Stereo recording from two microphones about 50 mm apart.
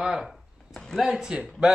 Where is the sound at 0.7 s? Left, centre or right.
Centre.